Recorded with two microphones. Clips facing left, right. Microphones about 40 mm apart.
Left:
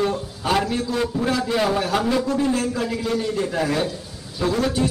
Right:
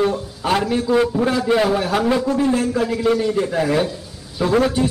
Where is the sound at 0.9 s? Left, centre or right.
Centre.